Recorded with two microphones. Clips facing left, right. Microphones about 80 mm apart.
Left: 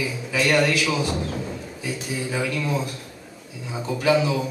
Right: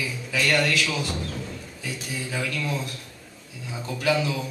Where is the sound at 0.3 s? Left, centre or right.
Centre.